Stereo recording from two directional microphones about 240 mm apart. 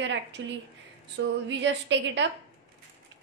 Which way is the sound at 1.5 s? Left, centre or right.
Right.